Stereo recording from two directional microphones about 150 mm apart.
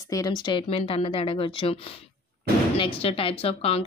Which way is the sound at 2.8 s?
40° left (ahead or behind).